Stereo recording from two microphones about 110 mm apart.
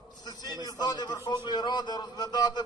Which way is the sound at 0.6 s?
40° left (ahead or behind).